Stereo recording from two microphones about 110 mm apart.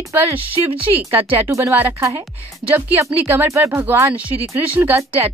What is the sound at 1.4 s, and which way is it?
Speech, 25° right (ahead or behind).